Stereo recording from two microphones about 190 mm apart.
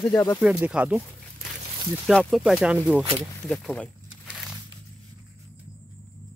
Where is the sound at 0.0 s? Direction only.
10° left (ahead or behind).